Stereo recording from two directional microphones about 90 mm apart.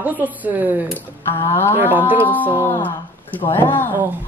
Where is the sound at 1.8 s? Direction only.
20° right (ahead or behind).